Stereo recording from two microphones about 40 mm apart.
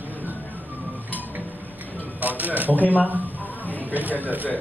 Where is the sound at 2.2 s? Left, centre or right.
Right.